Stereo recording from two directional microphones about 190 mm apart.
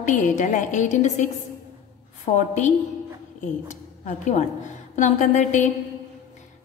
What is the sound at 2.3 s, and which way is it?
A woman's voice, 40° left (ahead or behind).